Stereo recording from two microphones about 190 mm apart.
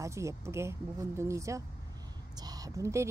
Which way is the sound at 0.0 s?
15° right (ahead or behind).